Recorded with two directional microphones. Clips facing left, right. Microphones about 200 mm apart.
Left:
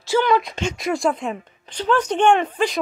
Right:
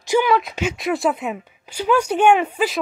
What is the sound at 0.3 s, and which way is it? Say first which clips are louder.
Speech: even; 5° right (ahead or behind).